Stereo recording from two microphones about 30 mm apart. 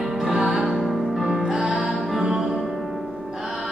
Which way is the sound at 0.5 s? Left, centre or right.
Centre.